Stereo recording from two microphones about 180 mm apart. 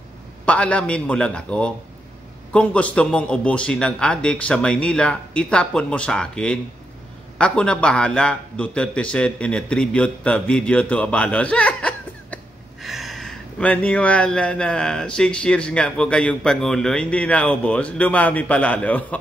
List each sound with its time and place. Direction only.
0.5 s a man's voice: 5° left (ahead or behind)